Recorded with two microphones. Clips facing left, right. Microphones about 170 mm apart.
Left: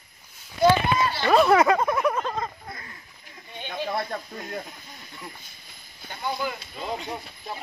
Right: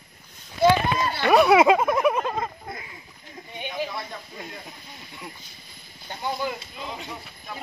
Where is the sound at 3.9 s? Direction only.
55° left (ahead or behind).